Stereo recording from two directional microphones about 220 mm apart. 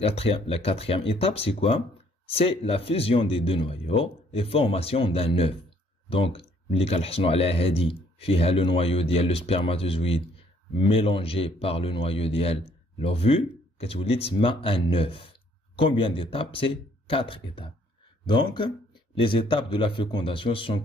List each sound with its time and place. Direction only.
0.0 s speech: 25° left (ahead or behind)